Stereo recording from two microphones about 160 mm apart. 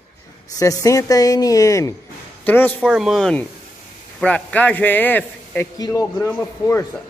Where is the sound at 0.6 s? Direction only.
20° left (ahead or behind).